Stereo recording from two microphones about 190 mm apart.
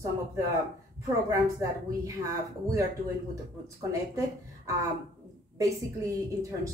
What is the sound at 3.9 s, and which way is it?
Speech, 15° right (ahead or behind).